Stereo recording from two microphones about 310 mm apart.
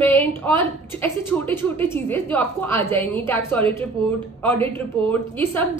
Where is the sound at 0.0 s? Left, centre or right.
Centre.